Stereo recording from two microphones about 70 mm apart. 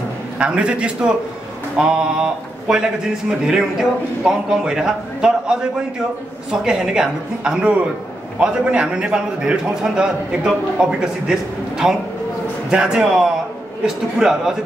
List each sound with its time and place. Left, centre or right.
0.4 s a man's voice: centre